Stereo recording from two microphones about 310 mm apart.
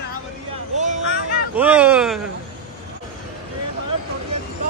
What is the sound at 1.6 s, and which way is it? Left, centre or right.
Speech, centre.